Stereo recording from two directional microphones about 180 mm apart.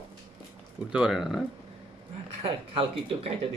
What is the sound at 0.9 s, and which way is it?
Speech, 5° right (ahead or behind).